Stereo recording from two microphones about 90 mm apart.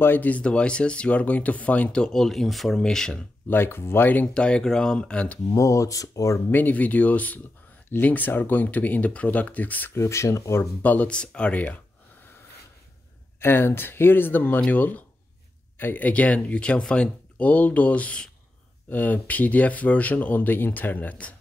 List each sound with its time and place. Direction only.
0.0 s speech: 20° left (ahead or behind)
3.4 s speech: 25° left (ahead or behind)
5.5 s speech: 35° left (ahead or behind)
6.5 s speech: 20° left (ahead or behind)
10.8 s speech: 15° left (ahead or behind)
13.4 s speech: 25° left (ahead or behind)